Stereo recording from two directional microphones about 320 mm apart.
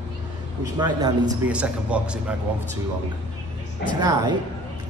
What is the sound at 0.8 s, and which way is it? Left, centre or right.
Speech, centre.